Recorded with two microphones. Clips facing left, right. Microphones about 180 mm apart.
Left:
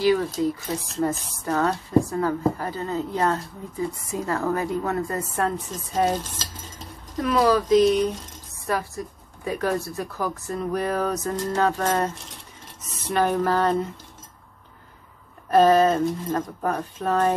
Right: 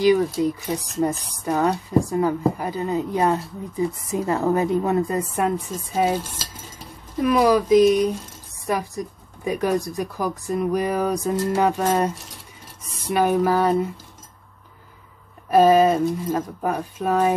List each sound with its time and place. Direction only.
0.0 s a woman's voice: 15° right (ahead or behind)
13.1 s a woman's voice: 10° right (ahead or behind)
15.5 s a woman's voice: 10° right (ahead or behind)